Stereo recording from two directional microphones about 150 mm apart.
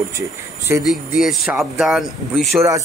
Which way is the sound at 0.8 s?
Centre (ahead or behind).